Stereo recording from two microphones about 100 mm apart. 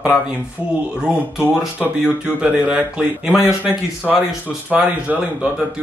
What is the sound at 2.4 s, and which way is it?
Speech, 10° right (ahead or behind).